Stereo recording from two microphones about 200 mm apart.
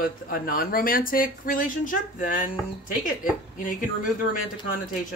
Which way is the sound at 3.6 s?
45° left (ahead or behind).